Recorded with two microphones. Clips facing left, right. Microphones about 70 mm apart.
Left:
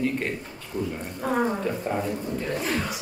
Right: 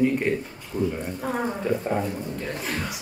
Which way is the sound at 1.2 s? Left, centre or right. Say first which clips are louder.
Left 3 dB; centre.